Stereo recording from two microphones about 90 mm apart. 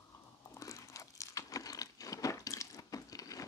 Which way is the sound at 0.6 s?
35° left (ahead or behind).